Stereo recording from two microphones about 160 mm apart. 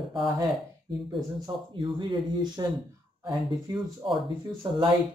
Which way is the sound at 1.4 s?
30° right (ahead or behind).